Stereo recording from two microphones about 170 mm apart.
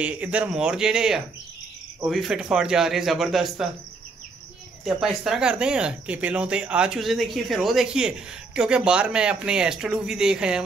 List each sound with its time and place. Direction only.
0.0 s speech: 10° right (ahead or behind)
4.8 s speech: 5° right (ahead or behind)